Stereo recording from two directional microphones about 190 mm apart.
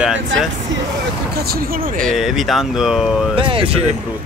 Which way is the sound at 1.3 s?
55° right (ahead or behind).